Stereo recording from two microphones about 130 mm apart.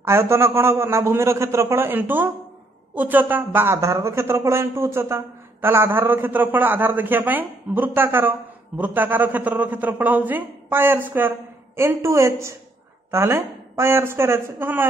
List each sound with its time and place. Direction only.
0.0 s a man's voice: 20° right (ahead or behind)